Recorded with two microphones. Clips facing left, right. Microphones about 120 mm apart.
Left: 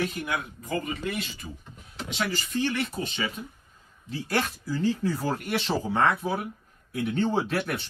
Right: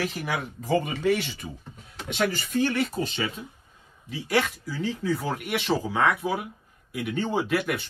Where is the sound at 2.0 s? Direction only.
50° right (ahead or behind).